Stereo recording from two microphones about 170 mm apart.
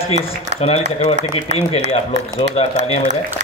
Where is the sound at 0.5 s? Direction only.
40° right (ahead or behind).